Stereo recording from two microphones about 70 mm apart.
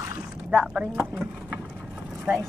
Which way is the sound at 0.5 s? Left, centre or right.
Centre.